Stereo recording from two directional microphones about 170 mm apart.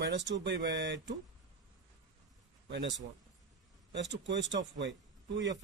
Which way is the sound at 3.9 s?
90° right.